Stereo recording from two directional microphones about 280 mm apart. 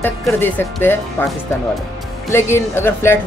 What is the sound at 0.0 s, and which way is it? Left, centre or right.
Speech, centre.